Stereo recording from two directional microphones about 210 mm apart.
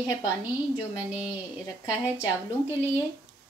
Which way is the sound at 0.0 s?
5° right (ahead or behind).